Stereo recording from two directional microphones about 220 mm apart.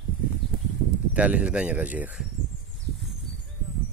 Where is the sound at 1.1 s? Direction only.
5° right (ahead or behind).